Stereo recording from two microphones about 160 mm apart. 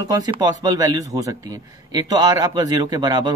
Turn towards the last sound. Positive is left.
turn(degrees=-25)  # may be behind; listen again after turning